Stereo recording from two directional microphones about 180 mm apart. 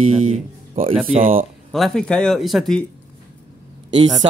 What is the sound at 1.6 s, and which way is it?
Speech, centre (ahead or behind).